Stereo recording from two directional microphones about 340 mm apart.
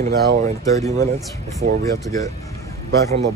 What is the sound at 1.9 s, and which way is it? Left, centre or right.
Speech, centre.